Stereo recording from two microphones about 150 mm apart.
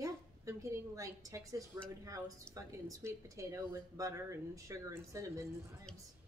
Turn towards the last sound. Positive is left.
turn(degrees=-20)  # may be behind; listen again after turning